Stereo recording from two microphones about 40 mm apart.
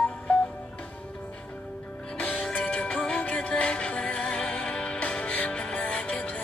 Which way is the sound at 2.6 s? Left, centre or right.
Left.